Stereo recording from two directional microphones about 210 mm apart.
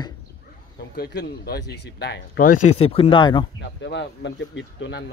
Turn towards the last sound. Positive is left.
turn(degrees=60)  # may be behind; listen again after turning